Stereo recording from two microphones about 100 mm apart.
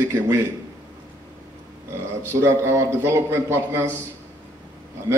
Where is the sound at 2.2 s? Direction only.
25° right (ahead or behind).